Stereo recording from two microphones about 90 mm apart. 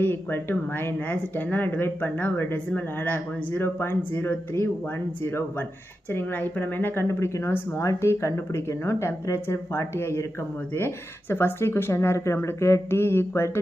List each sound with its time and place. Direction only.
0.0 s speech: 25° left (ahead or behind)
6.1 s speech: 20° left (ahead or behind)